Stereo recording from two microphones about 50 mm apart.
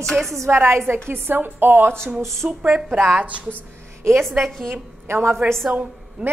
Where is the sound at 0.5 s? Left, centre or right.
Right.